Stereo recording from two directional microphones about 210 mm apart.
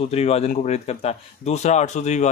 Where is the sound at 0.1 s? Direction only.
30° left (ahead or behind).